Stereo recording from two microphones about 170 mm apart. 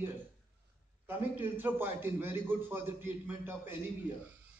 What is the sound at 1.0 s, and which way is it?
A man's voice, 10° right (ahead or behind).